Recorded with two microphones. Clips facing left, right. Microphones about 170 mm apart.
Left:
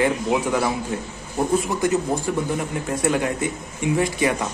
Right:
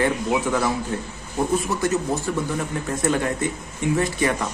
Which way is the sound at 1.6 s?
20° left (ahead or behind).